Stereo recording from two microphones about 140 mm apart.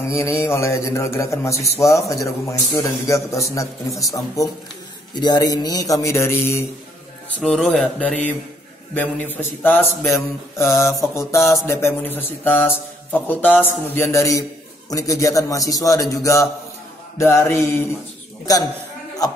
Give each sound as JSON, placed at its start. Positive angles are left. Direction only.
{"t": 0.1, "sound": "a man's voice", "side_deg": 20}
{"t": 7.3, "sound": "a man's voice", "side_deg": 5}
{"t": 19.2, "sound": "a man's voice", "side_deg": 25}